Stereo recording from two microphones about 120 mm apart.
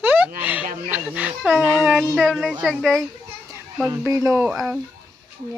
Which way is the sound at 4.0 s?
25° right (ahead or behind).